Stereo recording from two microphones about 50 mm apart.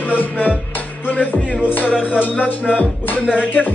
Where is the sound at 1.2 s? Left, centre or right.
Left.